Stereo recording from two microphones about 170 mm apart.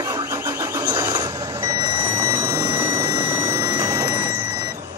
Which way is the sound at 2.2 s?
15° right (ahead or behind).